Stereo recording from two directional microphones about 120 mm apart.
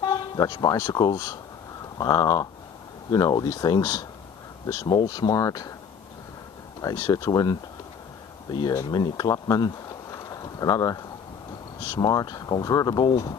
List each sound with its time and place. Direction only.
0.0 s speech: 35° left (ahead or behind)
6.8 s speech: 35° left (ahead or behind)
8.7 s speech: 30° left (ahead or behind)